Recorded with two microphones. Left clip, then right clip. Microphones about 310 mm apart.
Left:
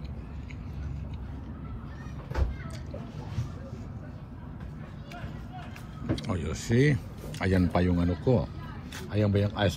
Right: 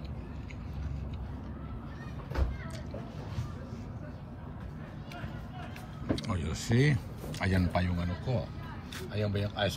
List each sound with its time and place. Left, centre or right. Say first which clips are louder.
6.1 s a man's voice: left 4 dB; centre